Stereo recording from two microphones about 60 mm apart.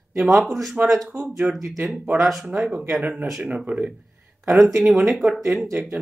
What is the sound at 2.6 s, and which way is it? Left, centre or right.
Speech, right.